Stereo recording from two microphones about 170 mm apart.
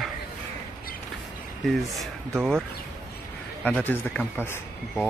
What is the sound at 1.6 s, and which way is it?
Speech, centre (ahead or behind).